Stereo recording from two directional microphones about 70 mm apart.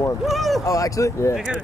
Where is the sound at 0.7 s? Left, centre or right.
Left.